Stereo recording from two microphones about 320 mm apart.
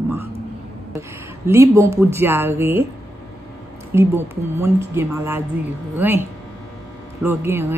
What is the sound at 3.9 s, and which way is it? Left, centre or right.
A woman's voice, centre.